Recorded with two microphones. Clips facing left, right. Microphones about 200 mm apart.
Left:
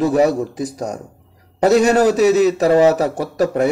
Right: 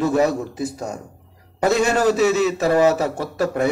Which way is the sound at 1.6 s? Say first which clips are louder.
Left 5 dB; 40° left (ahead or behind).